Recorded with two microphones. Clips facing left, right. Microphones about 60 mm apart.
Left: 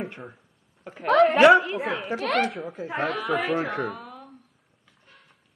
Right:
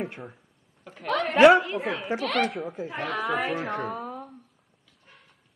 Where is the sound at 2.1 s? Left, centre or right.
Left.